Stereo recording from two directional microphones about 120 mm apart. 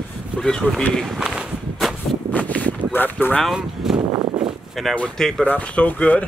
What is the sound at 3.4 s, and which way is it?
Speech, 5° right (ahead or behind).